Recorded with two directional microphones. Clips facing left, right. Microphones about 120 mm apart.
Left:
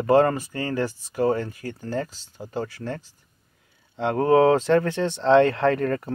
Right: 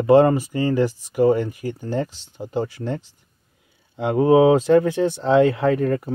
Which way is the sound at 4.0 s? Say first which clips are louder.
Right 3 dB; 10° right (ahead or behind).